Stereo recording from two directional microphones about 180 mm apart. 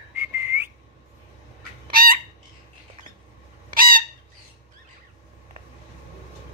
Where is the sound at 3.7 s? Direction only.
50° right (ahead or behind).